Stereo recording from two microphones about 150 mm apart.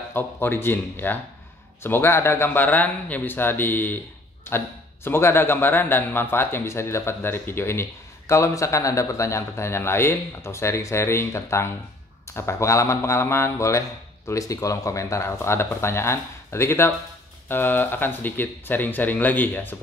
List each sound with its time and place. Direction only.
0.1 s a man's voice: 15° left (ahead or behind)